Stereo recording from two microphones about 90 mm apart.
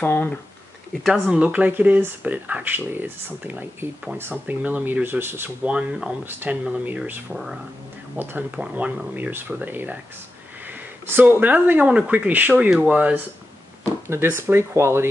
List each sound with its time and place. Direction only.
0.0 s speech: 20° left (ahead or behind)
1.3 s speech: 15° right (ahead or behind)
5.7 s speech: 10° right (ahead or behind)
6.2 s speech: 20° right (ahead or behind)
14.0 s speech: 30° right (ahead or behind)